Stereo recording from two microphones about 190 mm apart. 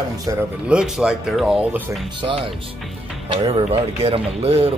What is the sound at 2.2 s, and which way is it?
Speech, 30° right (ahead or behind).